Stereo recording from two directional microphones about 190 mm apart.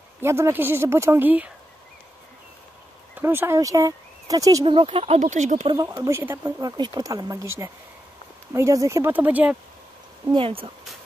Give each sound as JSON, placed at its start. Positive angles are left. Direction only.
{"t": 0.2, "sound": "speech", "side_deg": -15}
{"t": 3.2, "sound": "speech", "side_deg": -10}
{"t": 5.7, "sound": "speech", "side_deg": -20}
{"t": 10.3, "sound": "speech", "side_deg": -30}